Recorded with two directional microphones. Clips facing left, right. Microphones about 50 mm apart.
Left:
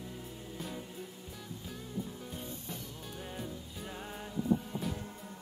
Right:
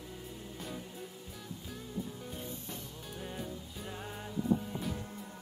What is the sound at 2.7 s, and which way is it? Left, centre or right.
Music, centre.